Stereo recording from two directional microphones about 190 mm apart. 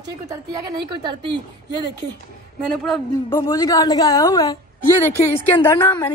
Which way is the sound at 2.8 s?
10° left (ahead or behind).